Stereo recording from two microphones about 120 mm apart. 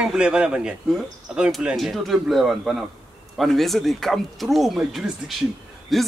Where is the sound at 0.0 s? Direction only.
5° right (ahead or behind).